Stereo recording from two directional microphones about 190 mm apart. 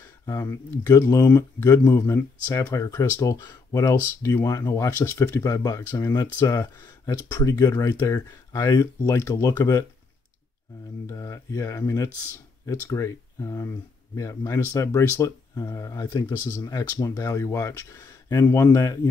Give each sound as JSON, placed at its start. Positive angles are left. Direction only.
{"t": 0.3, "sound": "speech", "side_deg": 15}
{"t": 11.1, "sound": "speech", "side_deg": 15}